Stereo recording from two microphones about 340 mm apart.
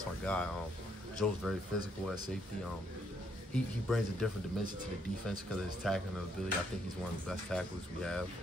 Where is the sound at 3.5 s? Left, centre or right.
Centre.